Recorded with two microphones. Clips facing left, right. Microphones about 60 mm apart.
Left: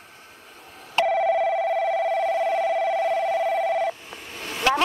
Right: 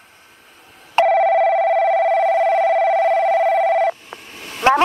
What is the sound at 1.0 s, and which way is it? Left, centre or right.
Telephone bell ringing, right.